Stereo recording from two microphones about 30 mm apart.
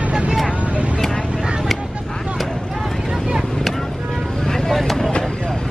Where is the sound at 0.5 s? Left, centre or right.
Right.